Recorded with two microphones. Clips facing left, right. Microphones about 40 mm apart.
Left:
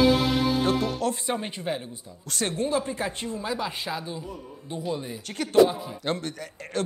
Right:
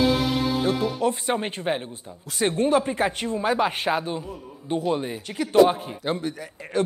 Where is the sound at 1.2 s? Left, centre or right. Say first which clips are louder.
Right 4 dB; right.